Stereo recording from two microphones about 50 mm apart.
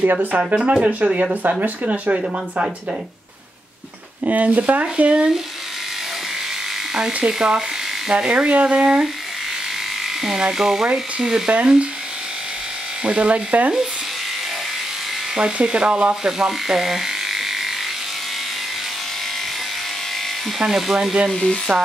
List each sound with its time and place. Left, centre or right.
0.0 s speech: right
0.6 s speech: centre
1.1 s speech: right
4.2 s speech: right
6.9 s electric shaver: centre
7.2 s speech: centre
10.0 s electric shaver: centre
10.4 s speech: centre
13.0 s speech: right
15.3 s speech: centre
16.3 s speech: centre
20.5 s speech: centre
21.3 s speech: centre